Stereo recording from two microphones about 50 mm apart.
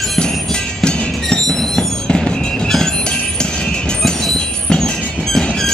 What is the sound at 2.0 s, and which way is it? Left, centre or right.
Music, centre.